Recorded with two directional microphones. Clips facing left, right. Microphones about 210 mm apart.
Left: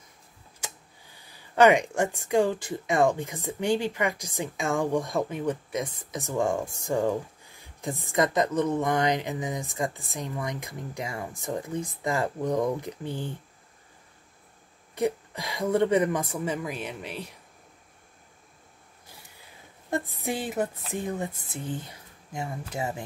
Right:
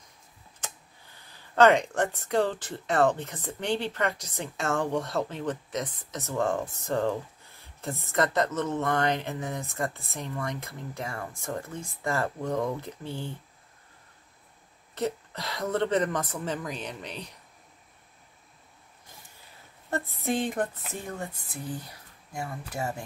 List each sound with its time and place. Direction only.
1.1 s speech: 10° left (ahead or behind)
15.0 s speech: 10° left (ahead or behind)
19.9 s speech: 15° left (ahead or behind)